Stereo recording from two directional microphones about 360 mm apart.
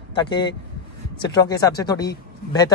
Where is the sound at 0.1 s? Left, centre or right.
Centre.